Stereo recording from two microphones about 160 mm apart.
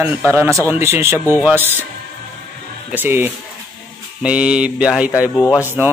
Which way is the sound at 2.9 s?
10° right (ahead or behind).